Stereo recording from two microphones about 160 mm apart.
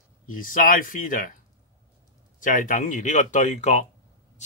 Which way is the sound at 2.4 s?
55° left (ahead or behind).